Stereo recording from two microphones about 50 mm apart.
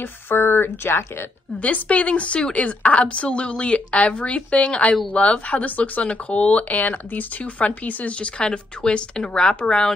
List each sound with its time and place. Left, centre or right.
0.0 s speech: left
1.6 s speech: left